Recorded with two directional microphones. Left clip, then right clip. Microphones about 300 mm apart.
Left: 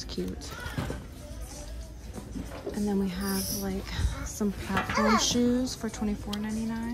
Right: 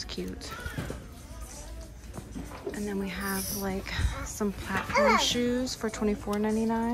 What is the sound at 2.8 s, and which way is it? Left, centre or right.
Speech, centre.